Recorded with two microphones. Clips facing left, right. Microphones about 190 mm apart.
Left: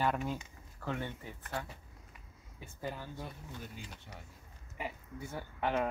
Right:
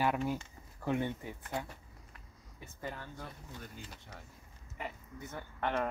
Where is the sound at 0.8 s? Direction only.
15° right (ahead or behind).